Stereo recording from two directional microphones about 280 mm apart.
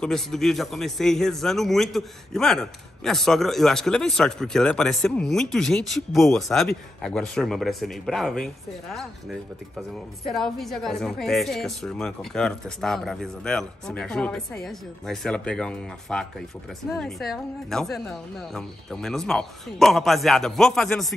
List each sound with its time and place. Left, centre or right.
0.0 s a woman's voice: centre